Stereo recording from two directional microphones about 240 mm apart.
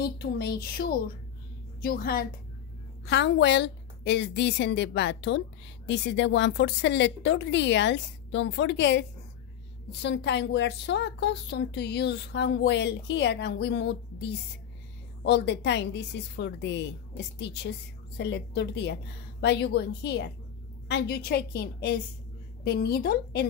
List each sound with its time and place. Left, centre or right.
0.0 s a woman's voice: left
10.0 s a woman's voice: left
15.2 s a woman's voice: left